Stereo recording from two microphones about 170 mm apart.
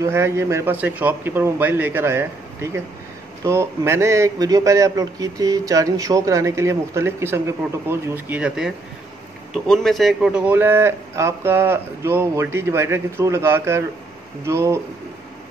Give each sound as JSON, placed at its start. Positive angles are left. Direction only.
{"t": 0.0, "sound": "a man's voice", "side_deg": -15}